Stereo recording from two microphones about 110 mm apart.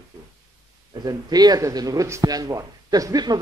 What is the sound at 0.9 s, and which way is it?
Speech, 35° right (ahead or behind).